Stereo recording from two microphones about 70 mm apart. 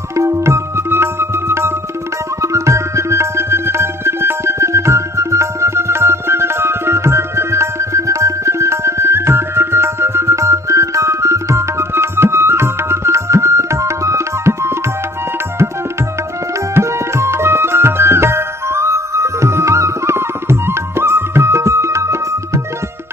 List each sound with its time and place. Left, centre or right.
0.1 s tabla: right
2.4 s music: right
16.7 s music: right